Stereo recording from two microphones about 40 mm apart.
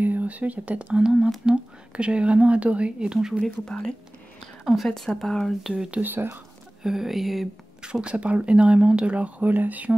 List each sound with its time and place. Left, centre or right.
0.0 s speech: right
0.9 s speech: centre
1.4 s speech: right
3.1 s speech: centre
3.7 s speech: left
4.9 s speech: centre
6.0 s speech: right
6.8 s speech: centre
7.8 s speech: right
9.5 s speech: right